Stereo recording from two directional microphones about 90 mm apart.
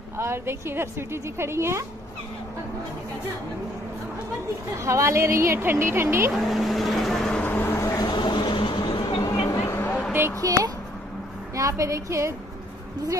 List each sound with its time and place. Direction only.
0.2 s a woman's voice: 30° right (ahead or behind)
4.7 s a woman's voice: 35° right (ahead or behind)
6.3 s speech: centre (ahead or behind)
7.4 s vehicle: 25° left (ahead or behind)
8.0 s a sound: 60° left (ahead or behind)
9.7 s vehicle: 25° left (ahead or behind)
10.4 s a woman's voice: 40° right (ahead or behind)